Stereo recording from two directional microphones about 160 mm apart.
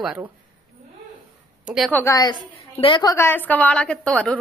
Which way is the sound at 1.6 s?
5° right (ahead or behind).